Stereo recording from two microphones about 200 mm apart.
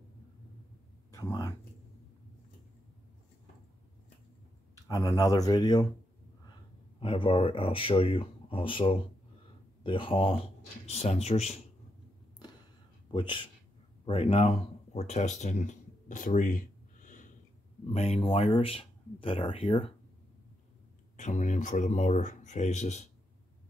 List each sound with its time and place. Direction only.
1.1 s speech: 15° left (ahead or behind)
4.8 s speech: 15° left (ahead or behind)
7.0 s speech: 25° left (ahead or behind)
13.1 s speech: 25° left (ahead or behind)
21.2 s speech: 35° left (ahead or behind)